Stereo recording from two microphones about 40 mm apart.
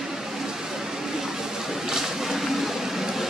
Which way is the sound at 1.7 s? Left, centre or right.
Centre.